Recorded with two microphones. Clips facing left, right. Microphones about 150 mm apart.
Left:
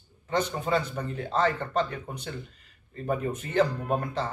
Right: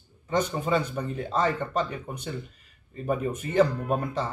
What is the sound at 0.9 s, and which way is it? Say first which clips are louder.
A man's voice: even; 10° right (ahead or behind).